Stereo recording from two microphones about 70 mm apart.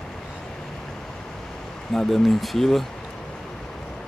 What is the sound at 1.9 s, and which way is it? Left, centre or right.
Speech, centre.